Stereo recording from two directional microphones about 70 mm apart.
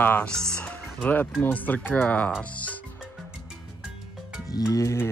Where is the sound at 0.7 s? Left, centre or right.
Left.